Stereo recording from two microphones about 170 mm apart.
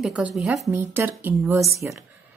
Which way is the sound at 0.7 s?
10° right (ahead or behind).